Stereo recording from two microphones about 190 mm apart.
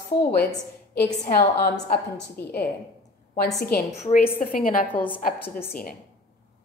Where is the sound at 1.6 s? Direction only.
55° left (ahead or behind).